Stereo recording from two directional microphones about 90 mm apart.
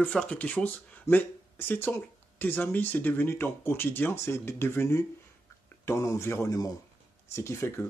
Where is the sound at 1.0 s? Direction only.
25° left (ahead or behind).